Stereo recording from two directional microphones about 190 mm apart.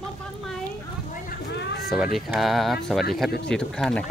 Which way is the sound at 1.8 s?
Centre (ahead or behind).